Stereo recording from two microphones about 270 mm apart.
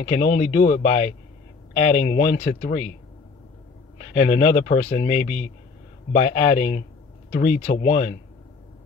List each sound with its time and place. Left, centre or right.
0.0 s speech: left
2.0 s speech: left
4.1 s speech: left